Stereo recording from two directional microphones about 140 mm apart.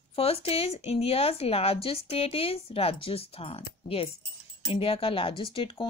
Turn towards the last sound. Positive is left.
turn(degrees=40)  # may be behind; listen again after turning